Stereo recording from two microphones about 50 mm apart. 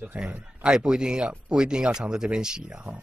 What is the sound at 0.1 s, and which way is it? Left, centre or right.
Speech, right.